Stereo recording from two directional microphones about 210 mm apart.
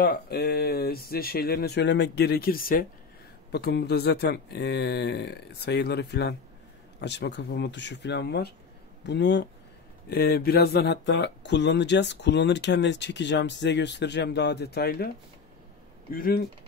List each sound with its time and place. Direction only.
0.0 s speech: 45° left (ahead or behind)
16.1 s speech: 45° left (ahead or behind)